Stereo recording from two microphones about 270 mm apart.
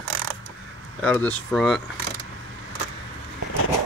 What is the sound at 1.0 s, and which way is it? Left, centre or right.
Speech, centre.